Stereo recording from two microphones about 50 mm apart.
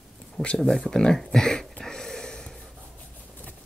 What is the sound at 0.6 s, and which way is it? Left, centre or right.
Speech, centre.